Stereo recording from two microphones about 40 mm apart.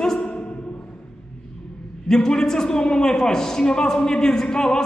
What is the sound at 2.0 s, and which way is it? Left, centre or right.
A man's voice, centre.